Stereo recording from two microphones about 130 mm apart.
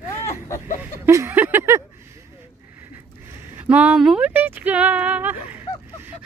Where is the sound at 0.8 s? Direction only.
20° right (ahead or behind).